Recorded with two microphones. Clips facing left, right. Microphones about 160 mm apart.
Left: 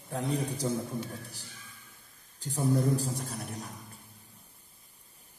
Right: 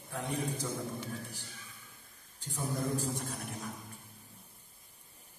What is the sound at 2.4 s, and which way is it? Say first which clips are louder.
A man's voice: left 8 dB; 35° left (ahead or behind).